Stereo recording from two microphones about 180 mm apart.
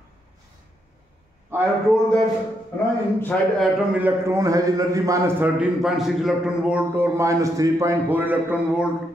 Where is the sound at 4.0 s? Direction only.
15° right (ahead or behind).